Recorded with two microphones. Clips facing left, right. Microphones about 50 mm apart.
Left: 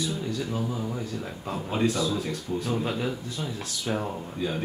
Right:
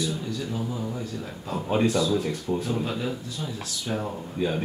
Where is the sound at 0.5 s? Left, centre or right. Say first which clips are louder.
Even; centre.